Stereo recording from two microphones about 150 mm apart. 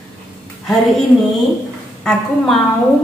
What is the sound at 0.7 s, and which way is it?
Speech, centre (ahead or behind).